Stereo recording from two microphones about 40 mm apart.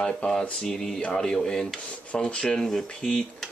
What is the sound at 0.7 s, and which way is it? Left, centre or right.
Speech, centre.